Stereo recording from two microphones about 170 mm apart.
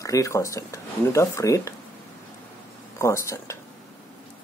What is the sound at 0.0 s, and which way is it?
Speech, 20° left (ahead or behind).